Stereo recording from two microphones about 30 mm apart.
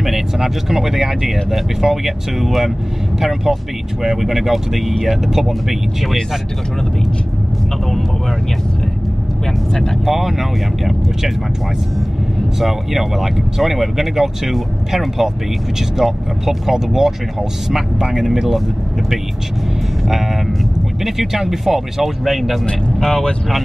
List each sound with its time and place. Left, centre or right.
0.0 s speech: centre
10.0 s speech: centre
12.5 s speech: centre
21.0 s speech: centre
22.7 s speech: centre